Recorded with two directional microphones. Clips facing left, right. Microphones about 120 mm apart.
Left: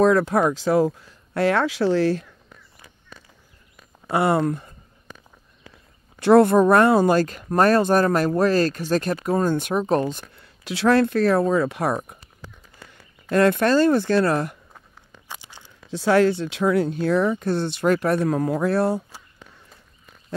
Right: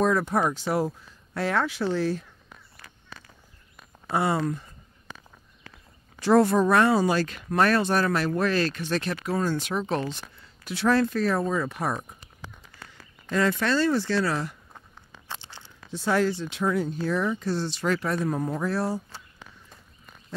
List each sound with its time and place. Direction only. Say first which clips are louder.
0.0 s speech: left 6 dB; 85° left
1.3 s speech: left 6 dB; 70° left (ahead or behind); by 2.2 s 90° left
4.1 s speech: left 5 dB; 60° left (ahead or behind)
6.1 s speech: left 6 dB; 60° left (ahead or behind); by 10.2 s 45° left (ahead or behind)
10.4 s speech: left 4 dB; 90° left; by 12.2 s 70° left (ahead or behind)
13.3 s speech: left 7 dB; 60° left (ahead or behind)
15.2 s a sound: even; 10° left (ahead or behind)
15.9 s speech: left 6 dB; 85° left; by 19.0 s 60° left (ahead or behind)